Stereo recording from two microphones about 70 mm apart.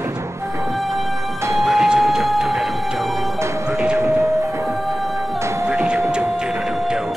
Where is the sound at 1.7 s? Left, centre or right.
Centre.